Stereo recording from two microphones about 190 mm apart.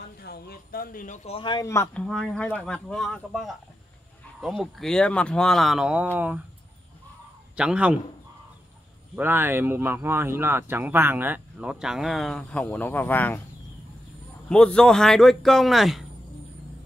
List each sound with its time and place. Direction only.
0.2 s speech: 55° left (ahead or behind); by 2.0 s 15° left (ahead or behind)
2.0 s speech: 5° left (ahead or behind)
7.5 s speech: 5° right (ahead or behind)
9.1 s speech: 10° right (ahead or behind); by 13.4 s 10° left (ahead or behind)
14.5 s speech: 5° left (ahead or behind)